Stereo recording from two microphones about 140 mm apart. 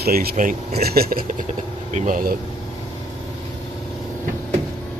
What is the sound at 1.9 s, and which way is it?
Speech, 70° right (ahead or behind).